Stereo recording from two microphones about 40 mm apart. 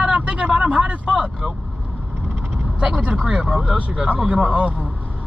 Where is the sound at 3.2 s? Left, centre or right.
Centre.